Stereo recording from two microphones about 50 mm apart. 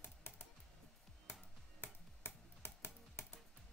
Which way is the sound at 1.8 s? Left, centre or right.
Left.